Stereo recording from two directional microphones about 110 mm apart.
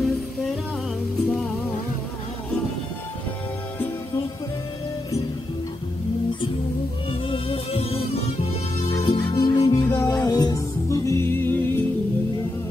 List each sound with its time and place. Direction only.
7.1 s music: 55° left (ahead or behind)
9.0 s music: 45° left (ahead or behind); by 11.8 s 20° left (ahead or behind)